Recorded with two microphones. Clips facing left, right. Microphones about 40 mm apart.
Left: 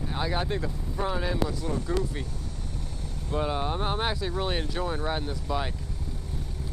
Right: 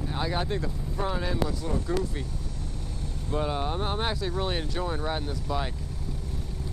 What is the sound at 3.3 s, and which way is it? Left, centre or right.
Speech, centre.